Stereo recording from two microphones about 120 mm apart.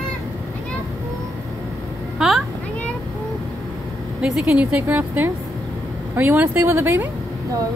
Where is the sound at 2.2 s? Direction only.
Centre (ahead or behind).